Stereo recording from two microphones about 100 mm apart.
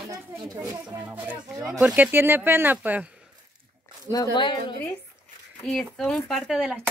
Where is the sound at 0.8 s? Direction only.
15° right (ahead or behind).